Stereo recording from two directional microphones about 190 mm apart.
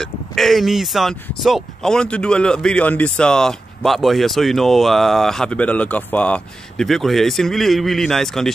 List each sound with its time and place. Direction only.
0.0 s speech: centre (ahead or behind)